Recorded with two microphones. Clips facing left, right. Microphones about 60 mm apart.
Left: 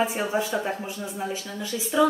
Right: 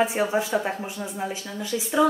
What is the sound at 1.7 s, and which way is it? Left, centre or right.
Speech, right.